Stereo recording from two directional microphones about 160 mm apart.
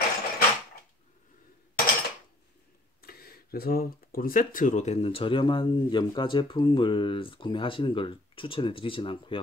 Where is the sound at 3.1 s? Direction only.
70° left (ahead or behind).